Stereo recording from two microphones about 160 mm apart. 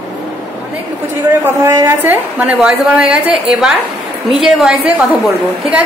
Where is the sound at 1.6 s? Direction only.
20° right (ahead or behind).